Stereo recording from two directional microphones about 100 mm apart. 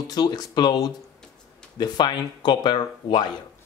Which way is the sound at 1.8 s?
45° left (ahead or behind).